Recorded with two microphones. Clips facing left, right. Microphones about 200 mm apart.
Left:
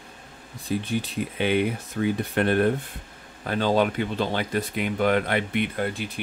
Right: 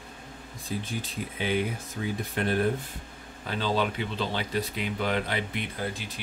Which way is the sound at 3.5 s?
50° left (ahead or behind).